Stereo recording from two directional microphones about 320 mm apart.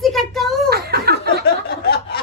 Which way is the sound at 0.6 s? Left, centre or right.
Right.